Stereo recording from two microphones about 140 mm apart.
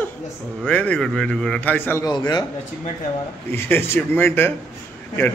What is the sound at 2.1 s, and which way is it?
Speech, 30° left (ahead or behind).